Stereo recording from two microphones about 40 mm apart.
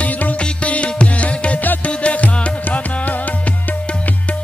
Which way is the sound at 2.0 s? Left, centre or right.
Left.